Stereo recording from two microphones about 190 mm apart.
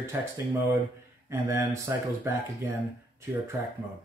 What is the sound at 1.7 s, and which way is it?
Speech, 15° right (ahead or behind).